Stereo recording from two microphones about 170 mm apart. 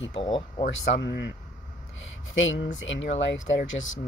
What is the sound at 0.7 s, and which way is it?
Speech, 90° left.